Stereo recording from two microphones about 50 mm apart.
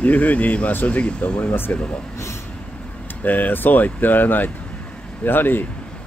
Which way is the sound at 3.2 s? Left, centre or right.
Left.